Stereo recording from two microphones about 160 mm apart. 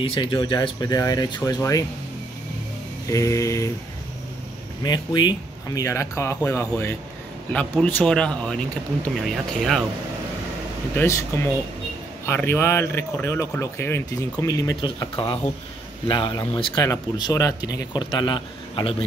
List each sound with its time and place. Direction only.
0.0 s speech: 35° left (ahead or behind)
3.1 s speech: 20° left (ahead or behind)
4.8 s speech: 25° left (ahead or behind); by 9.8 s centre (ahead or behind)
11.0 s speech: 15° left (ahead or behind); by 19.0 s 30° left (ahead or behind)